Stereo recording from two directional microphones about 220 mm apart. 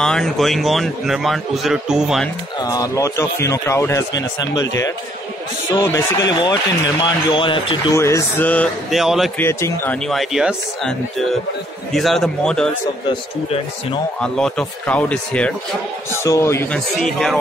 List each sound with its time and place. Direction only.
0.0 s a man's voice: centre (ahead or behind)
2.6 s a man's voice: 15° left (ahead or behind)
5.7 s a man's voice: 15° left (ahead or behind); by 9.3 s centre (ahead or behind)
9.4 s a man's voice: 10° left (ahead or behind)
10.0 s a man's voice: centre (ahead or behind)
14.2 s a man's voice: 5° left (ahead or behind)